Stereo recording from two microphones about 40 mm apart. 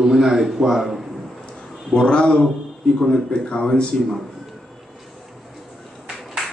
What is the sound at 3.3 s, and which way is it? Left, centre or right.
Speech, left.